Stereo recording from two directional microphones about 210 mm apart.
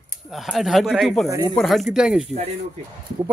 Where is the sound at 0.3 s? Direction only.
Centre (ahead or behind).